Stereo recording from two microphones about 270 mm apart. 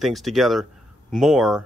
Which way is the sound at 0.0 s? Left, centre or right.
Centre.